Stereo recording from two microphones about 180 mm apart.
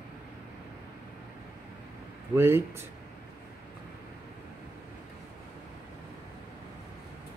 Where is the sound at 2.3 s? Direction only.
15° right (ahead or behind).